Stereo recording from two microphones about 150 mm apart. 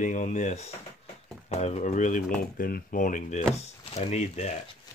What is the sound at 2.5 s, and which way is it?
Speech, 75° left (ahead or behind).